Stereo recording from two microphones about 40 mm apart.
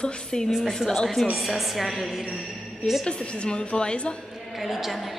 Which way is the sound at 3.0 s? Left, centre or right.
Left.